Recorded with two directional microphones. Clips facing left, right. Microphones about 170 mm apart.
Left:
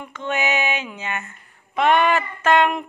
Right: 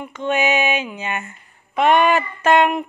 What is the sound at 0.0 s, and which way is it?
Female singing, 15° right (ahead or behind).